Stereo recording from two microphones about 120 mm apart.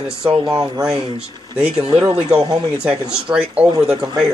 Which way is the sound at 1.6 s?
5° right (ahead or behind).